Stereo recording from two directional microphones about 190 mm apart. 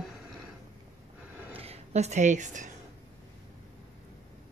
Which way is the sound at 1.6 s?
35° right (ahead or behind).